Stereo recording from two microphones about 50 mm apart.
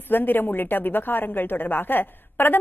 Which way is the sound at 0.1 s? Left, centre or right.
Left.